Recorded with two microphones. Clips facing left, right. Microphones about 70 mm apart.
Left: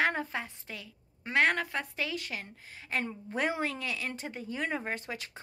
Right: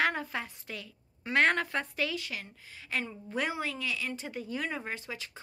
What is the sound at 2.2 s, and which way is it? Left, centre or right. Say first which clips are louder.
A woman's voice: left 1 dB; left.